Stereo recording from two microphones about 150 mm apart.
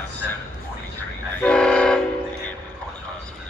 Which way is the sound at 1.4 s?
5° left (ahead or behind).